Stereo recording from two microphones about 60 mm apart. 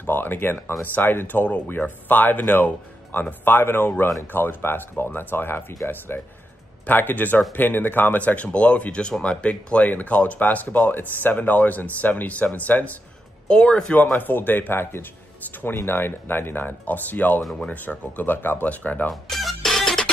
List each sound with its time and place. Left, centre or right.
0.0 s speech: left
13.5 s speech: centre
14.1 s speech: left
19.0 s music: centre